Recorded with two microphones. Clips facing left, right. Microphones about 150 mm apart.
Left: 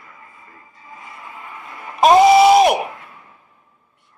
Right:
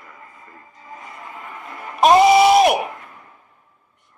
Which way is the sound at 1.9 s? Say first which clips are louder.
Left 2 dB; centre (ahead or behind).